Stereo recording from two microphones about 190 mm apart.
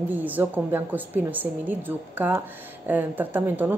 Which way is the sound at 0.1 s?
10° right (ahead or behind).